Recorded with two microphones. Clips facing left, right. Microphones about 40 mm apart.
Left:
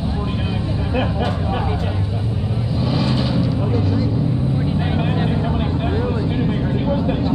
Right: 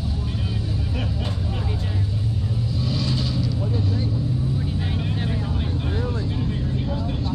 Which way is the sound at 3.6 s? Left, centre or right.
Left.